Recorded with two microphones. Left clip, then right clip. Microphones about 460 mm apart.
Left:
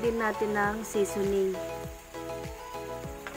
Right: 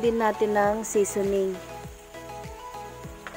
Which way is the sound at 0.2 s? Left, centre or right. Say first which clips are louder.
Right 5 dB; centre.